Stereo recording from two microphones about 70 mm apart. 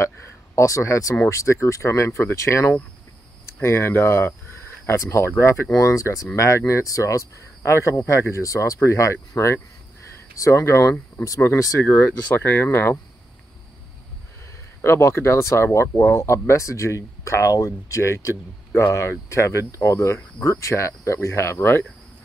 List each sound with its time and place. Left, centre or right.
0.0 s speech: left
5.7 s speech: left
12.0 s speech: left
14.8 s speech: left